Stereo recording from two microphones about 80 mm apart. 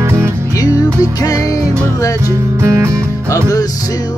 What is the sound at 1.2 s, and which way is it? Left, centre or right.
Music, left.